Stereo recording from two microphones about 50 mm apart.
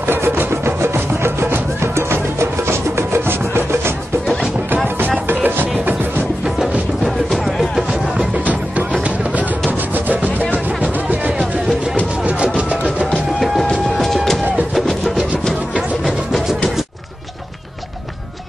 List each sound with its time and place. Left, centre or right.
0.0 s music: right
4.8 s music: right
7.1 s music: centre
9.0 s music: right
9.7 s rub: right
10.5 s music: right
13.9 s music: centre
16.3 s music: centre